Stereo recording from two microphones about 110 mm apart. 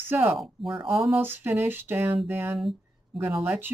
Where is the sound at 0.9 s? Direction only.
25° right (ahead or behind).